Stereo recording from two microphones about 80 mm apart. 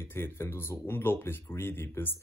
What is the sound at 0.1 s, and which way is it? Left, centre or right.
Speech, left.